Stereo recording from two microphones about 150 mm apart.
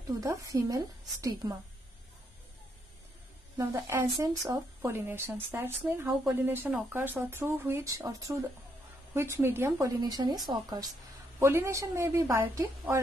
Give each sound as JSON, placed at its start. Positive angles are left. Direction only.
{"t": 0.1, "sound": "speech", "side_deg": -20}
{"t": 3.5, "sound": "a woman's voice", "side_deg": -20}
{"t": 11.3, "sound": "a woman's voice", "side_deg": -15}